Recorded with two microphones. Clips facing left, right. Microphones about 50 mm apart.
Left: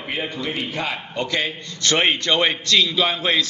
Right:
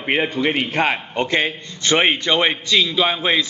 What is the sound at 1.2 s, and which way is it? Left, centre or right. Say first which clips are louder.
A man's voice: right 3 dB; right.